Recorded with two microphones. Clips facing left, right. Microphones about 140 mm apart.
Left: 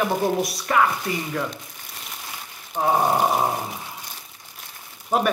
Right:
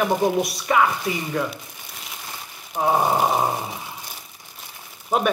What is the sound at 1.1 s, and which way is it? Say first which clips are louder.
Mantra: right 1 dB; 10° right (ahead or behind).